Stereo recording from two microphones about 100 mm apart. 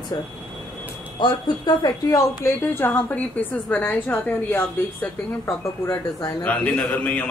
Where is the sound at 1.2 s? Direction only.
50° left (ahead or behind).